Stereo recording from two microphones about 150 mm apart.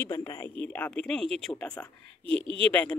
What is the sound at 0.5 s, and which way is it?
A woman's voice, 10° left (ahead or behind).